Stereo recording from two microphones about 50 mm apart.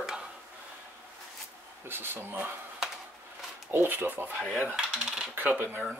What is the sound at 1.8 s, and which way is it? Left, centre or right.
Speech, right.